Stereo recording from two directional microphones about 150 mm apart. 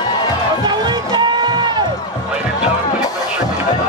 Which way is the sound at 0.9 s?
30° right (ahead or behind).